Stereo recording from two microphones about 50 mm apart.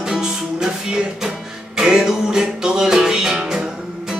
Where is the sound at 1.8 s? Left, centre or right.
Centre.